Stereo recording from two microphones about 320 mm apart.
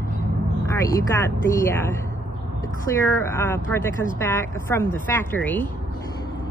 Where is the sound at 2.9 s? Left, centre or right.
Centre.